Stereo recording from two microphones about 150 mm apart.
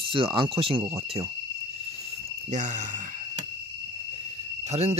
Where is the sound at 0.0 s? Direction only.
35° right (ahead or behind).